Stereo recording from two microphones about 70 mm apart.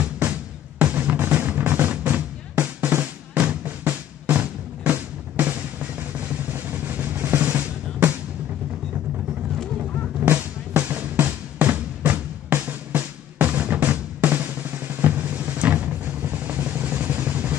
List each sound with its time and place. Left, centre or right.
0.2 s music: right
6.5 s drum: right
10.2 s music: right